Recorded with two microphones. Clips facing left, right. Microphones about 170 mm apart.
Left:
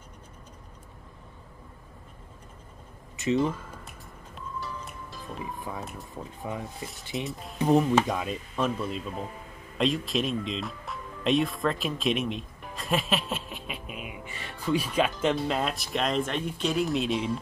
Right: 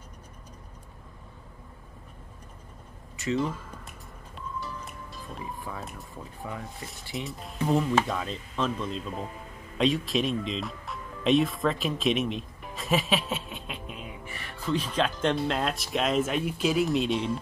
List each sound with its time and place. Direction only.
3.2 s speech: 20° left (ahead or behind)
4.4 s music: centre (ahead or behind)
5.4 s speech: 20° left (ahead or behind)
7.2 s speech: centre (ahead or behind)
7.5 s speech: 20° left (ahead or behind)
14.2 s speech: 20° left (ahead or behind)
14.8 s speech: 10° left (ahead or behind)